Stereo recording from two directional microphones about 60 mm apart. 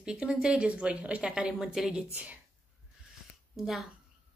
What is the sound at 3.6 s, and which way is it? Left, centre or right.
Speech, centre.